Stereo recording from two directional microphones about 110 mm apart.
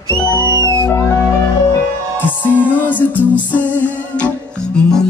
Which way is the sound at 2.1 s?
15° left (ahead or behind).